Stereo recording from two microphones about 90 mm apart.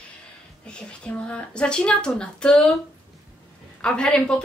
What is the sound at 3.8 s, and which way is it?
Speech, 10° left (ahead or behind).